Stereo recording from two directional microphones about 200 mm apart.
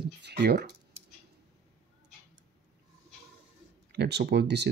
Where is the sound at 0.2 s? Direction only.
55° right (ahead or behind).